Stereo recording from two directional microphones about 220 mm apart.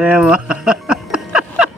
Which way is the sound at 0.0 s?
5° right (ahead or behind).